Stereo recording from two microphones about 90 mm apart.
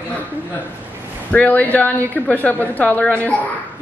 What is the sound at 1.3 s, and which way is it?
A woman's voice, 20° left (ahead or behind).